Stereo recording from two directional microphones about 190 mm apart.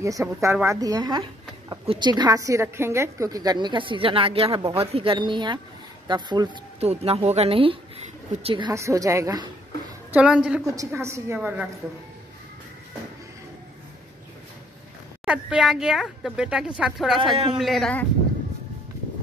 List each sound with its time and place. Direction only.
0.0 s a woman's voice: 15° right (ahead or behind)
10.1 s a woman's voice: 5° right (ahead or behind)
15.2 s speech: 5° right (ahead or behind)